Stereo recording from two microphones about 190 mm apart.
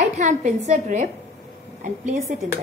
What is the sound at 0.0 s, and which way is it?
A woman's voice, 40° right (ahead or behind).